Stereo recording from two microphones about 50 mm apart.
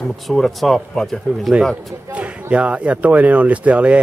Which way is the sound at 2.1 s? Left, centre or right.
Right.